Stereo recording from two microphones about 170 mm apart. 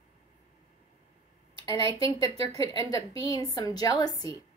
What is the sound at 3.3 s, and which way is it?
Speech, 20° left (ahead or behind).